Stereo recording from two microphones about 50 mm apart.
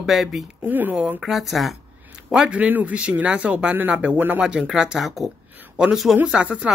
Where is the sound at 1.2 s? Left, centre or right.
Centre.